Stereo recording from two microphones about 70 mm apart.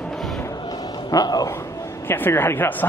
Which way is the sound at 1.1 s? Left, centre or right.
Left.